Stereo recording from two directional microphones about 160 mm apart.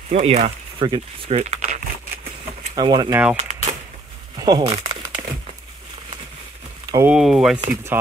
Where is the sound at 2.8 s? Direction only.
25° right (ahead or behind).